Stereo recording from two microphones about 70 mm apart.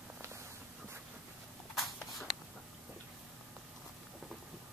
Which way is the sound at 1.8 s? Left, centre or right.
Centre.